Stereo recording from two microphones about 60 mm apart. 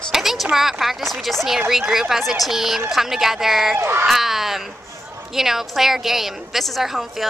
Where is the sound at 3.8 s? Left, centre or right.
Right.